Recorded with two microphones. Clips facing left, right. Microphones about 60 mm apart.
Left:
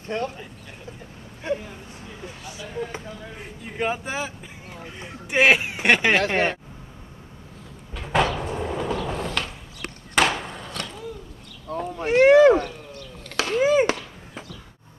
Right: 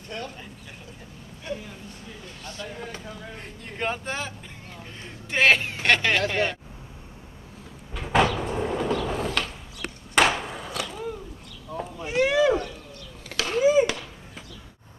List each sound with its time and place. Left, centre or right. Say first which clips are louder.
0.1 s speech: left 8 dB; left
1.5 s speech: left 7 dB; left
2.2 s speech: even; centre
6.2 s speech: left 3 dB; left
7.9 s cupboard open or close: right 1 dB; centre
8.4 s train: right 1 dB; centre
10.1 s skateboard: even; centre
11.7 s a sound: left 6 dB; left